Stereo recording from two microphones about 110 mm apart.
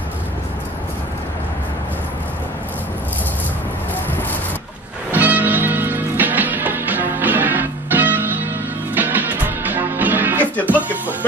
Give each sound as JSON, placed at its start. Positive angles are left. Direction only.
{"t": 5.1, "sound": "music", "side_deg": -15}